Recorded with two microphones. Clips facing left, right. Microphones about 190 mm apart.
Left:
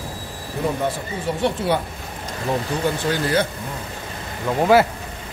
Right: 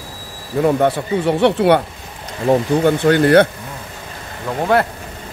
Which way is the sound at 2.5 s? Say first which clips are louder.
Right 9 dB; 55° right (ahead or behind).